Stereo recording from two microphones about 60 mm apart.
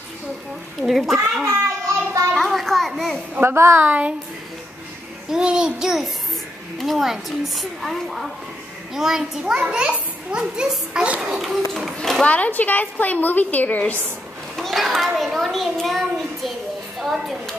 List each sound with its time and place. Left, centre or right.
0.7 s a child's voice: centre
2.3 s a sound: centre
2.9 s a child's voice: centre
3.4 s a woman's voice: right
3.8 s speech: right
5.3 s a child's voice: centre
11.3 s a child's voice: centre
12.0 s speech: centre
12.3 s a woman's voice: left
14.6 s a child's voice: centre